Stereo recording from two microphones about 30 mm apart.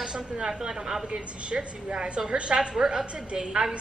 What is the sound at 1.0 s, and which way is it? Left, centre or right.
A woman's voice, right.